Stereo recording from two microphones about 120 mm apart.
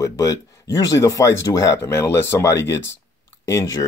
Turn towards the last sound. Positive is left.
turn(degrees=25)  # may be behind; listen again after turning